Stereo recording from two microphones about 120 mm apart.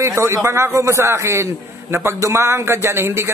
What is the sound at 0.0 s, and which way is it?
A man's voice, 20° right (ahead or behind).